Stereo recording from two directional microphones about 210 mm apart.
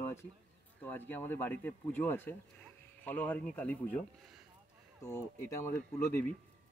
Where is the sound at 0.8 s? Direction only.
10° left (ahead or behind).